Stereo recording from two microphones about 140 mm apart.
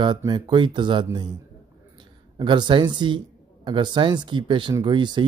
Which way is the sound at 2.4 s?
35° right (ahead or behind).